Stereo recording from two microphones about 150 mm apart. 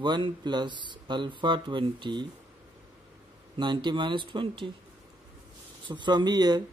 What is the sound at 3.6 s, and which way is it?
Speech, 30° right (ahead or behind).